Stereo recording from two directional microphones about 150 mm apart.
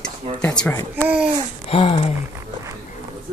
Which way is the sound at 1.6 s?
40° left (ahead or behind).